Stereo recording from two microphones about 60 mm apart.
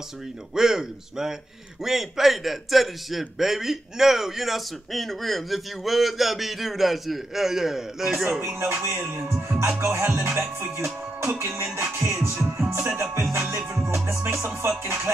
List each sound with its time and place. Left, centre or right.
0.6 s a man's voice: centre
8.4 s music: right